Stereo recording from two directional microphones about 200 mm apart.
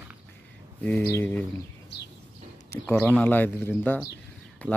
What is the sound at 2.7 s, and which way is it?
Speech, 10° left (ahead or behind).